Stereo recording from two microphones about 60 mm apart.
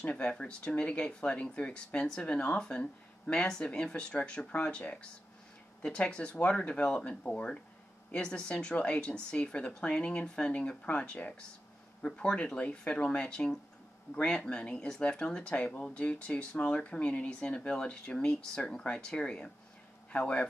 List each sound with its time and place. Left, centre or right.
0.0 s speech: centre